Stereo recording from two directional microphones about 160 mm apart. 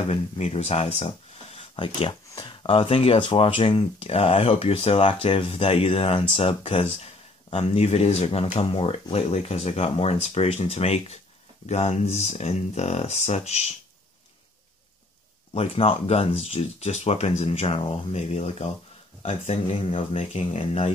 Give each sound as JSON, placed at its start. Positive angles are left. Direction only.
{"t": 0.1, "sound": "speech", "side_deg": 40}
{"t": 15.5, "sound": "speech", "side_deg": 40}